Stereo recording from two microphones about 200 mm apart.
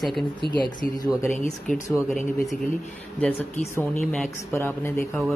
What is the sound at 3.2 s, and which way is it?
Speech, 10° left (ahead or behind).